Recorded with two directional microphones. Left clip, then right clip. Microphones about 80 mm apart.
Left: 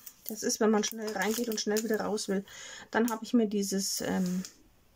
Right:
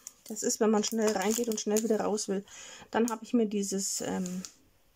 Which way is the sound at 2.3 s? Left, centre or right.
Centre.